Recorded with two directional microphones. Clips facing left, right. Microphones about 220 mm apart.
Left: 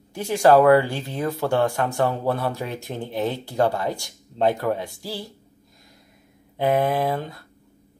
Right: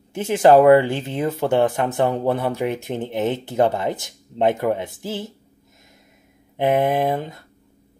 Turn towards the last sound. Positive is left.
turn(degrees=-25)  # may be behind; listen again after turning